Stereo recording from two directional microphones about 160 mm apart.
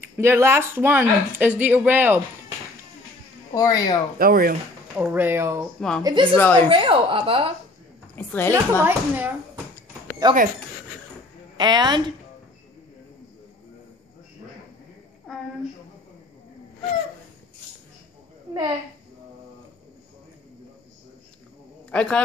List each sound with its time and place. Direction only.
0.2 s speech: 15° right (ahead or behind)
3.5 s speech: 25° left (ahead or behind)
4.2 s speech: 65° right (ahead or behind)
4.9 s speech: 10° right (ahead or behind)
5.8 s a woman's voice: 5° left (ahead or behind)
6.7 s a woman's voice: 30° right (ahead or behind)
8.2 s a woman's voice: 10° left (ahead or behind)
8.8 s speech: 10° right (ahead or behind)
10.3 s speech: 30° right (ahead or behind)
11.5 s a woman's voice: 25° right (ahead or behind)
21.9 s a woman's voice: 5° left (ahead or behind)